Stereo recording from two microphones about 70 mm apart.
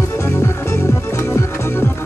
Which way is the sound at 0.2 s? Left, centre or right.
Left.